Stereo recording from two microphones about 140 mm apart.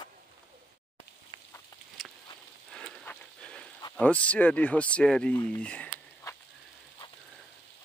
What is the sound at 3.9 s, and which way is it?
Speech, 10° left (ahead or behind).